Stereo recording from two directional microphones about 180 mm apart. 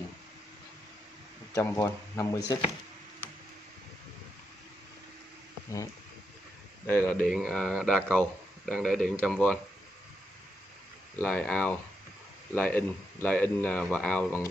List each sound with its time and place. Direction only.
1.5 s speech: 15° left (ahead or behind)
6.9 s a man's voice: 10° left (ahead or behind)
11.1 s speech: 5° left (ahead or behind)